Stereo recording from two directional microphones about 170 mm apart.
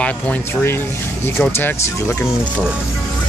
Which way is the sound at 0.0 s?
10° left (ahead or behind).